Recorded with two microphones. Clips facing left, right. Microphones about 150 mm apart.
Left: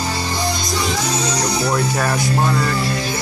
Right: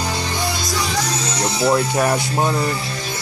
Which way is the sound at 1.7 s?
20° right (ahead or behind).